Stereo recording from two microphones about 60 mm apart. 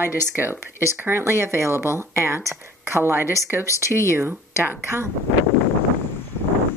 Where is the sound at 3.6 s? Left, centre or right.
Left.